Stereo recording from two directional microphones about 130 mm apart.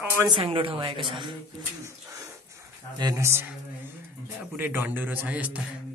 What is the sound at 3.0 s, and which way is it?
Speech, 20° right (ahead or behind).